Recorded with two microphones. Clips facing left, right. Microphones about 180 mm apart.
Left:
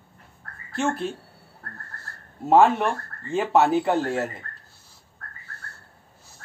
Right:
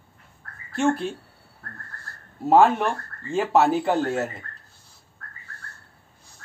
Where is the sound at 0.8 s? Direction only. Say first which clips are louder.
Right 3 dB; centre (ahead or behind).